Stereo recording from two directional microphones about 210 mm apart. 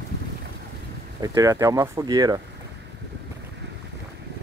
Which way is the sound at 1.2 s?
15° right (ahead or behind).